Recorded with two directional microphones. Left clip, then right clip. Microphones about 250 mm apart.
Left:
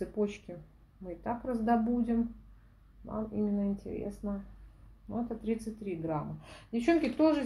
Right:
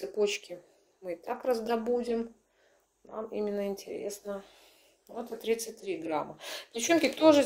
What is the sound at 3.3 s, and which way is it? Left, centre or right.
Speech, right.